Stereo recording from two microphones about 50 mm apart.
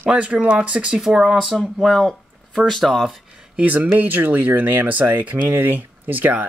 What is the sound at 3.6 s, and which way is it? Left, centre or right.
Speech, right.